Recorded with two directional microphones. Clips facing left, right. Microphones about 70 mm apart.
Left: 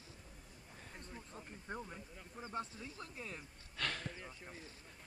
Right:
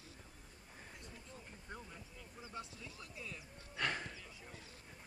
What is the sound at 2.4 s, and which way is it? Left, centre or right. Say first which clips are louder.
Speech: left 5 dB; left.